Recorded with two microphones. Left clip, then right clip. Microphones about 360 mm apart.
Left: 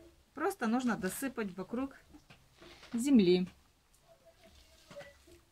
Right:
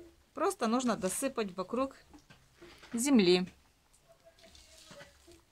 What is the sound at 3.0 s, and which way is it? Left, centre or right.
Speech, centre.